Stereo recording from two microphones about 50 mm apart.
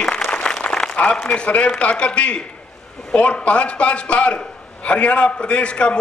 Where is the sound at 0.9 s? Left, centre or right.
Left.